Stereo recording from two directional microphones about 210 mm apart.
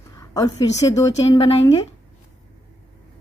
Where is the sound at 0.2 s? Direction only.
15° left (ahead or behind).